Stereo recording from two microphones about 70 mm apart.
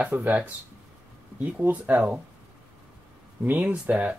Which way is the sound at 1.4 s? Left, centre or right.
Right.